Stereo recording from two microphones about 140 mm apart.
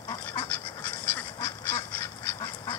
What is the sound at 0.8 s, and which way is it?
Duck, 15° left (ahead or behind).